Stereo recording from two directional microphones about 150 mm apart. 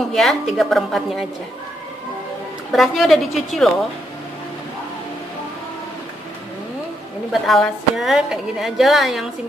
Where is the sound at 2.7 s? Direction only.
Centre (ahead or behind).